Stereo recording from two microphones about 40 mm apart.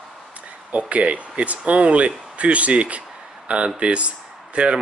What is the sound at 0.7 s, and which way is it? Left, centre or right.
Speech, right.